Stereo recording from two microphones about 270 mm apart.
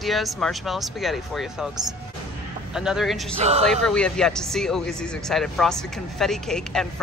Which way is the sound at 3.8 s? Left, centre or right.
Centre.